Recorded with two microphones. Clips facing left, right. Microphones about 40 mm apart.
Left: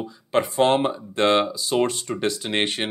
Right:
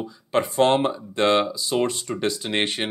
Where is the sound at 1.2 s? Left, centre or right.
Centre.